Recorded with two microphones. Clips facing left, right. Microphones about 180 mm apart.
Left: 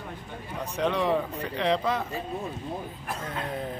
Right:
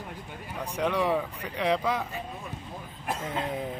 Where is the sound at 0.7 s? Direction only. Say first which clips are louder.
Left 1 dB; 10° right (ahead or behind).